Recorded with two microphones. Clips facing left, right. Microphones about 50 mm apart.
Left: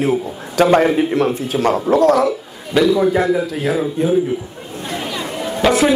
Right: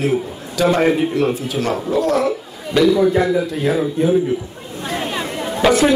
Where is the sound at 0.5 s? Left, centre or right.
Left.